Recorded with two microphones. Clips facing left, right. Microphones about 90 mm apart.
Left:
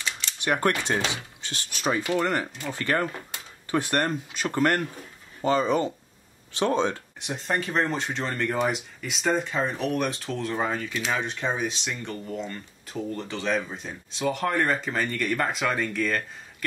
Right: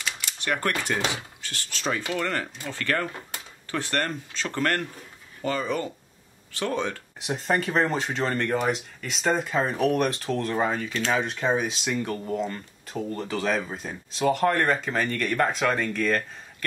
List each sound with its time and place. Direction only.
0.4 s speech: 15° left (ahead or behind)
7.2 s speech: centre (ahead or behind)